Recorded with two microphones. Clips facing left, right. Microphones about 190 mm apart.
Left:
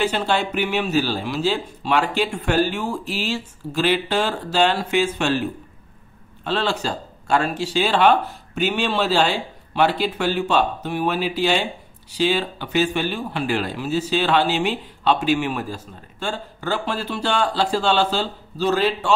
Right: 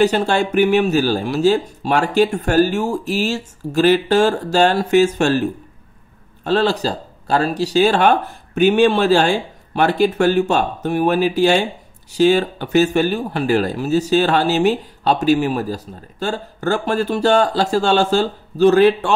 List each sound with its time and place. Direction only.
0.0 s speech: 45° right (ahead or behind)